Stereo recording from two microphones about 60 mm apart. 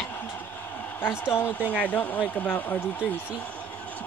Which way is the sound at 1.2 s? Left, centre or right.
Left.